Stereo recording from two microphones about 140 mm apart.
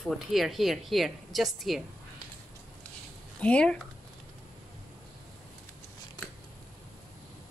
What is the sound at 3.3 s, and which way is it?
Speech, 10° left (ahead or behind).